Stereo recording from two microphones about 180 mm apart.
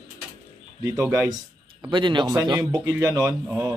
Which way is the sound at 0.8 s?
15° right (ahead or behind).